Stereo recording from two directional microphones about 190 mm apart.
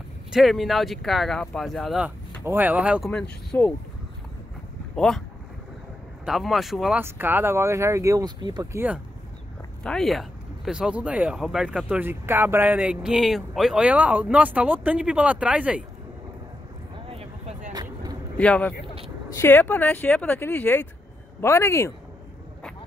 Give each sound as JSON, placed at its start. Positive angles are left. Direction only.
{"t": 0.3, "sound": "speech", "side_deg": 0}
{"t": 3.1, "sound": "speech", "side_deg": 5}
{"t": 4.9, "sound": "speech", "side_deg": 5}
{"t": 6.2, "sound": "speech", "side_deg": 0}
{"t": 9.8, "sound": "speech", "side_deg": 0}
{"t": 17.1, "sound": "a sound", "side_deg": -30}
{"t": 17.7, "sound": "a sound", "side_deg": -20}
{"t": 18.4, "sound": "speech", "side_deg": 5}